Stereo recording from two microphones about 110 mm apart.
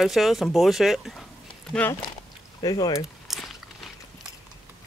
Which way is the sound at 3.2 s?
5° right (ahead or behind).